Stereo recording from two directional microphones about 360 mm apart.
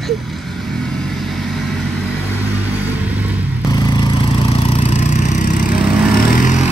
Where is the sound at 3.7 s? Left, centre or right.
Centre.